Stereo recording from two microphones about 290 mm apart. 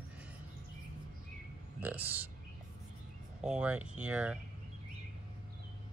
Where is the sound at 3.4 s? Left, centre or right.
Centre.